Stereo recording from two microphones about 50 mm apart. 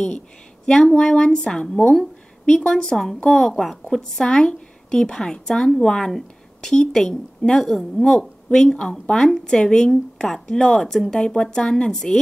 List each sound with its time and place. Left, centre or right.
0.7 s speech: centre
2.0 s a sound: centre
2.7 s speech: centre
3.4 s a woman's voice: centre
3.9 s speech: centre